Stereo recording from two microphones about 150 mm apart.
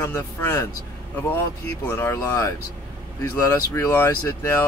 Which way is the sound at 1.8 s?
15° left (ahead or behind).